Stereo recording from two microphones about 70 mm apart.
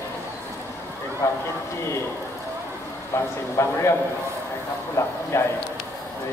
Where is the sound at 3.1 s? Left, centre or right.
Left.